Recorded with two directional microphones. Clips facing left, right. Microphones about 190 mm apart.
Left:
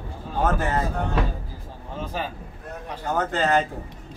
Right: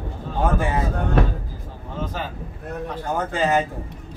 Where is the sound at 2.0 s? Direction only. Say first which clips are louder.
Right 1 dB; 10° left (ahead or behind).